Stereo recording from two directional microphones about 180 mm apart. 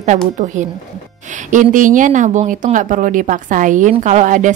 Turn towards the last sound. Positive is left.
turn(degrees=-45)  # may be behind; listen again after turning